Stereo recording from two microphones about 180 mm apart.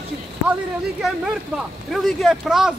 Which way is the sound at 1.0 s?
Centre (ahead or behind).